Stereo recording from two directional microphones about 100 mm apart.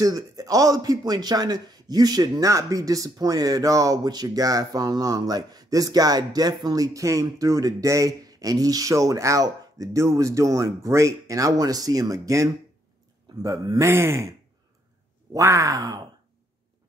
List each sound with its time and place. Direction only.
0.0 s speech: 40° right (ahead or behind)
15.3 s speech: 30° right (ahead or behind)